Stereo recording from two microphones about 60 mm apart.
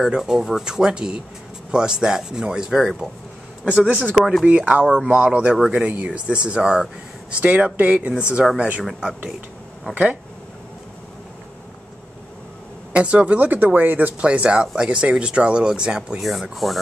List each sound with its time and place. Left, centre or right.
0.0 s speech: centre
3.8 s speech: centre
4.2 s speech: centre
4.5 s speech: right
7.3 s speech: right
12.9 s speech: centre
16.2 s speech: centre